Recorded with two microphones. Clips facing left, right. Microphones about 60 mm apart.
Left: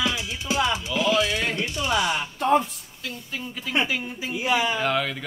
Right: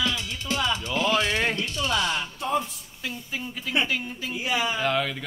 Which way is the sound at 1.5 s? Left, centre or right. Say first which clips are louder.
Left 2 dB; centre.